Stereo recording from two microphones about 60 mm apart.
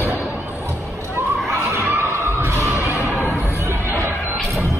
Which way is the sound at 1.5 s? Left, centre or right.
Right.